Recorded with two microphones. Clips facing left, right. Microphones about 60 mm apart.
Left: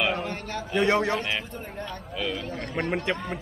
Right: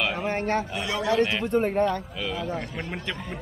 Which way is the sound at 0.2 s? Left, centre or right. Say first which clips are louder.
Right 5 dB; right.